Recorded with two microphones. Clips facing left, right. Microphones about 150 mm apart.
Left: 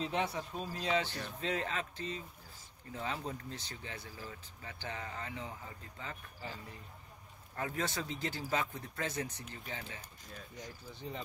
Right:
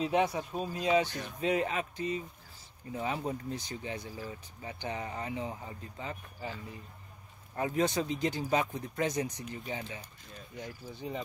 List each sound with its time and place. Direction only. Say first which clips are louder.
0.0 s speech: right 6 dB; 15° right (ahead or behind)
7.5 s speech: right 8 dB; 20° right (ahead or behind)